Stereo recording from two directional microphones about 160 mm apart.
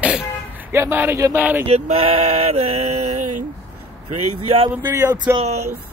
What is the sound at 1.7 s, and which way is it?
Male singing, 40° right (ahead or behind).